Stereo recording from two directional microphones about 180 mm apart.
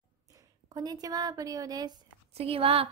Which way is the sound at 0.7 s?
20° right (ahead or behind).